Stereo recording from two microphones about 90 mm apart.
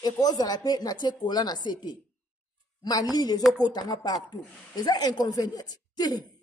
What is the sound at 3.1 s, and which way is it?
Speech, 50° left (ahead or behind).